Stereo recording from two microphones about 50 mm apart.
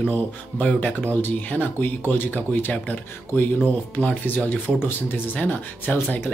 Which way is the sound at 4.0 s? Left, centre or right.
Left.